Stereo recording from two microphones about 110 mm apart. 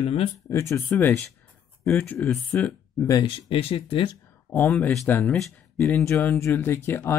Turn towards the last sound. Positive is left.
turn(degrees=20)  # may be behind; listen again after turning